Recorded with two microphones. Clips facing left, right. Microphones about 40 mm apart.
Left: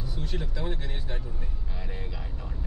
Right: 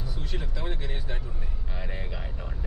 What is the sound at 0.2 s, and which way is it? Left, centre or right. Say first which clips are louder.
Speech: left 3 dB; centre.